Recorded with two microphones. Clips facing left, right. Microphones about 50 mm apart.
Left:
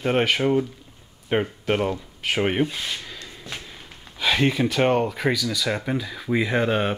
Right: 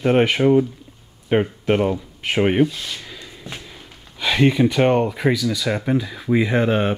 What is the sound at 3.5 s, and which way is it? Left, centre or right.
Speech, centre.